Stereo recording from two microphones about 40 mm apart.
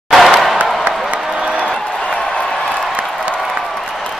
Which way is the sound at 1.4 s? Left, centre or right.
Right.